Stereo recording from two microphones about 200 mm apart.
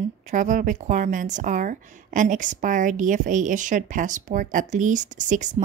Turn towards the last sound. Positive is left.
turn(degrees=-40)  # may be behind; listen again after turning